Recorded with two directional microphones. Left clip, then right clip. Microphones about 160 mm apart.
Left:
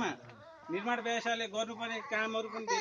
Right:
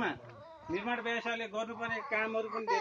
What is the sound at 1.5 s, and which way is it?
Speech, 15° left (ahead or behind).